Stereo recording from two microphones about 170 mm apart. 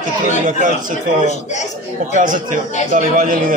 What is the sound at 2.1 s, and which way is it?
A man's voice, 50° right (ahead or behind).